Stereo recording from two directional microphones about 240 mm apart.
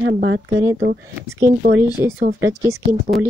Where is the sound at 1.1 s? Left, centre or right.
Centre.